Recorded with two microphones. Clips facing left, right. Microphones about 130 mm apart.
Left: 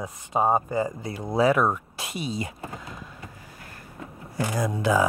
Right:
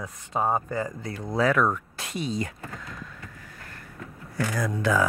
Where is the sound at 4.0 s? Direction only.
20° left (ahead or behind).